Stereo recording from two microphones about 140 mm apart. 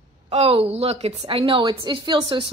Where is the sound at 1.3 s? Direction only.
40° right (ahead or behind).